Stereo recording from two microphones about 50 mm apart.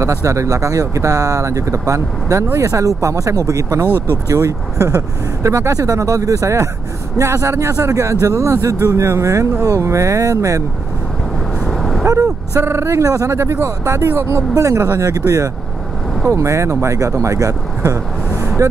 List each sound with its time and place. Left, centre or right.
0.0 s speech: right
3.8 s speech: left
4.3 s speech: right
11.6 s vehicle: centre
12.1 s speech: right